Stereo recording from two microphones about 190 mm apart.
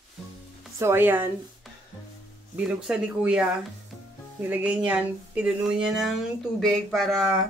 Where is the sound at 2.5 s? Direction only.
5° right (ahead or behind).